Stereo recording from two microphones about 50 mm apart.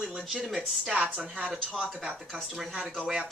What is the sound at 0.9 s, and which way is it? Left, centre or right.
Speech, right.